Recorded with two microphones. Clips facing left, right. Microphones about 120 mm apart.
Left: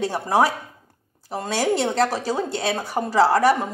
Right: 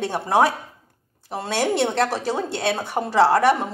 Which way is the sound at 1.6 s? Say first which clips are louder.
Even; centre (ahead or behind).